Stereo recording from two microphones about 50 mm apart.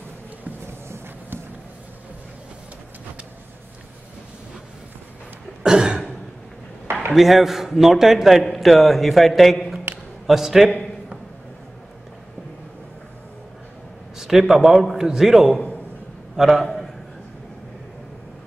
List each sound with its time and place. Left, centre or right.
0.8 s a sound: right
5.6 s cough: centre
7.1 s a man's voice: centre
14.1 s a man's voice: centre